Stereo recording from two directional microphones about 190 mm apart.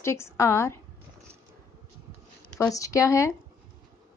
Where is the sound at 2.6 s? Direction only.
15° left (ahead or behind).